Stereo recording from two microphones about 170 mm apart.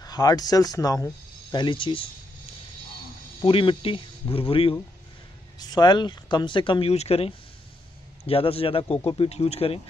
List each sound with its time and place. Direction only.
0.0 s speech: 20° left (ahead or behind)
3.3 s speech: 30° left (ahead or behind)